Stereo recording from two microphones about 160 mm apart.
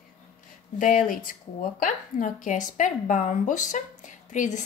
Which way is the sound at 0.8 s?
55° left (ahead or behind).